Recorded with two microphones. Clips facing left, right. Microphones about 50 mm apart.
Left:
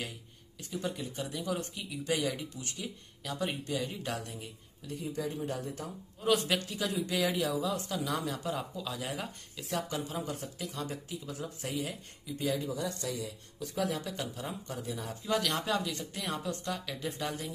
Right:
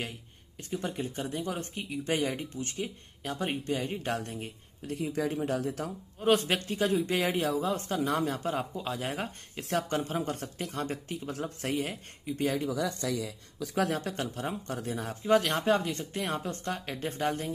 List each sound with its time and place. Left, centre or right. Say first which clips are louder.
0.6 s speech: right 3 dB; right
4.9 s speech: right 5 dB; right
6.2 s speech: right 3 dB; right
9.6 s speech: right 5 dB; right
13.9 s speech: right 4 dB; right
15.2 s speech: right 6 dB; right